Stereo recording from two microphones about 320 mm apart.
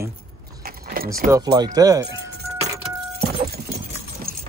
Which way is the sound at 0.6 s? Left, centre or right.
Right.